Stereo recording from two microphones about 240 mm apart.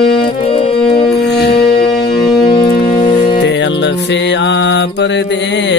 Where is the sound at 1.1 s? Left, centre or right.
Left.